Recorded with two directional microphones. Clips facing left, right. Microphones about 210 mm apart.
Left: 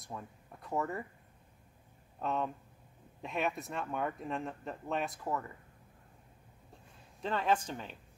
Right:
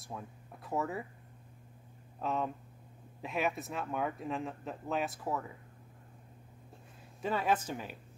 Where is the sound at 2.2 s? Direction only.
Centre (ahead or behind).